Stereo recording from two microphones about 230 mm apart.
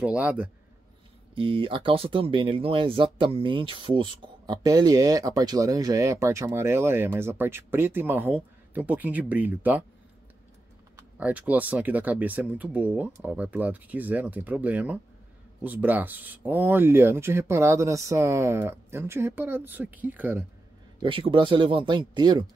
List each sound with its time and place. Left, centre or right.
0.0 s a man's voice: centre
1.3 s speech: right; by 9.8 s centre
11.0 s speech: centre
21.0 s speech: right